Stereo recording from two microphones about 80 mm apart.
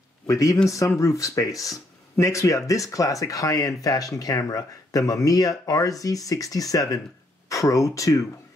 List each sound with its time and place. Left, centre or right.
0.3 s speech: left